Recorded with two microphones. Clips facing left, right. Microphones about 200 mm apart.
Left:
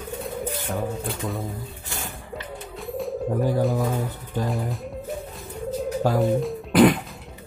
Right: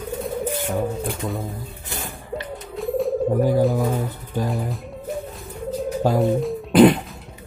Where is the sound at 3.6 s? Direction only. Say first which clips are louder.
Right 3 dB; 5° right (ahead or behind).